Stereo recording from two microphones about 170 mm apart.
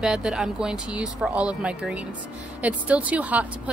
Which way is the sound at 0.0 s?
5° right (ahead or behind).